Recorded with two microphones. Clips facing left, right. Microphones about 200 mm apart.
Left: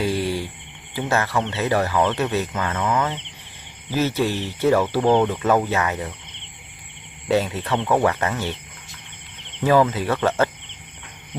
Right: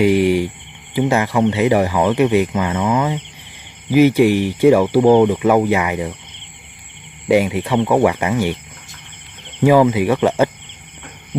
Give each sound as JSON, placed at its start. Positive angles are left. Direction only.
{"t": 0.0, "sound": "cricket", "side_deg": -15}
{"t": 0.9, "sound": "speech", "side_deg": -15}
{"t": 7.2, "sound": "speech", "side_deg": -15}
{"t": 9.7, "sound": "speech", "side_deg": -15}